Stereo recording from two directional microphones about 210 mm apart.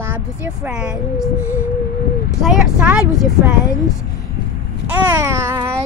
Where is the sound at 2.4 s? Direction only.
5° right (ahead or behind).